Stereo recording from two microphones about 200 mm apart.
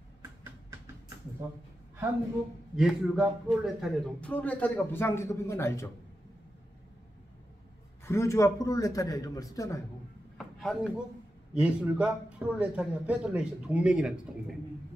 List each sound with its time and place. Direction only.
2.7 s a man's voice: centre (ahead or behind); by 5.9 s 15° left (ahead or behind)
8.0 s a man's voice: 15° left (ahead or behind)
10.3 s a sound: centre (ahead or behind)
11.5 s a man's voice: 5° right (ahead or behind)